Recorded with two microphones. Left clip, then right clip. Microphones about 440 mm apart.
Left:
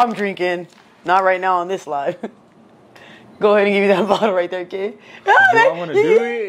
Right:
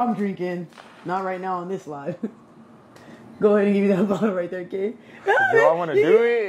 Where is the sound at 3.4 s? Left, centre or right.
Left.